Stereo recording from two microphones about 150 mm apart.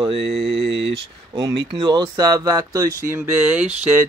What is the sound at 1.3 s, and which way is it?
Speech, 30° right (ahead or behind).